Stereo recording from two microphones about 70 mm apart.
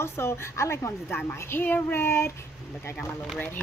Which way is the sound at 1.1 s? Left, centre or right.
Left.